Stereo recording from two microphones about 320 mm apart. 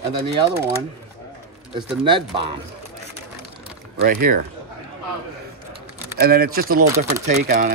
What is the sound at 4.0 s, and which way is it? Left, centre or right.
Speech, right.